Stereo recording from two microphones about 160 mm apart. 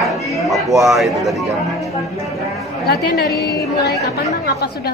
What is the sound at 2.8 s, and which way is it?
A woman's voice, 80° left.